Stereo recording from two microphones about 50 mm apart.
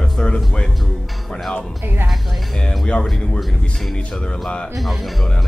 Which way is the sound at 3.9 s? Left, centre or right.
Centre.